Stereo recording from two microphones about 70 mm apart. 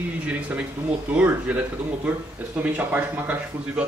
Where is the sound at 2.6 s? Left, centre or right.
Right.